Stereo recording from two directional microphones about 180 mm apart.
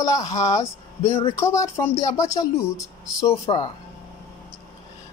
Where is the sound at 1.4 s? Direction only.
15° left (ahead or behind).